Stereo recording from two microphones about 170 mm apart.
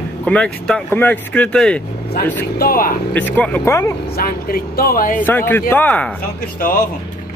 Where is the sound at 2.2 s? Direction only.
65° left (ahead or behind).